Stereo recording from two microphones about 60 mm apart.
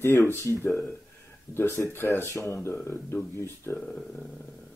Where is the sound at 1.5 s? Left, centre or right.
Left.